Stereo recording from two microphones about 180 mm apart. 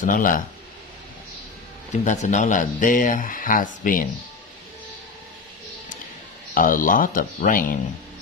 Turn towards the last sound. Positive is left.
turn(degrees=50)  # may be behind; listen again after turning